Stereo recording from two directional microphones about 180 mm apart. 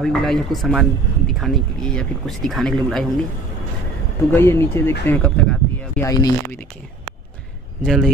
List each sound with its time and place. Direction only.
0.0 s speech: centre (ahead or behind)
4.3 s speech: 15° left (ahead or behind)
5.0 s a sound: 10° left (ahead or behind)
6.0 s speech: 20° left (ahead or behind)
7.8 s speech: centre (ahead or behind)